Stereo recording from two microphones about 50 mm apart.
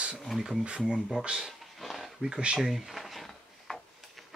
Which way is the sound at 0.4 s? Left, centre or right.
Centre.